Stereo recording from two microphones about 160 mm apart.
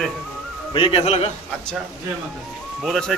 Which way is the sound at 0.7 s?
35° left (ahead or behind).